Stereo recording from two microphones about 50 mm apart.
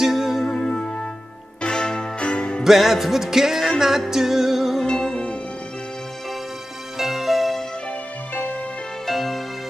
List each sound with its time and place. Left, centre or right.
0.0 s music: centre
0.5 s music: centre
2.6 s music: centre
4.8 s music: centre
7.0 s music: centre
9.0 s music: centre